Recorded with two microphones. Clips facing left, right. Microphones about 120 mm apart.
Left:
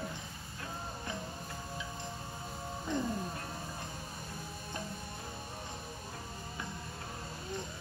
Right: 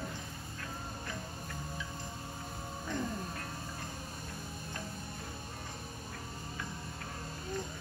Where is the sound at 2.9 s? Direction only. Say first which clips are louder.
Left 2 dB; 20° left (ahead or behind).